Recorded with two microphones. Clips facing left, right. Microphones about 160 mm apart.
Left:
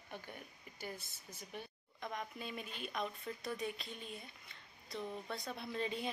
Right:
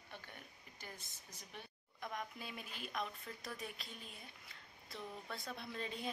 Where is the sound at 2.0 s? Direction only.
Centre (ahead or behind).